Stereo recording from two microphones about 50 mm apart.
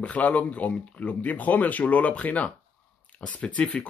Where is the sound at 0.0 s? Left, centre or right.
Left.